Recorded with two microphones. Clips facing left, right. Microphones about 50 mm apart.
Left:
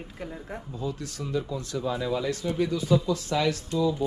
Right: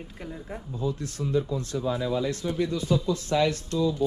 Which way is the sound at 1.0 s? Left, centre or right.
Right.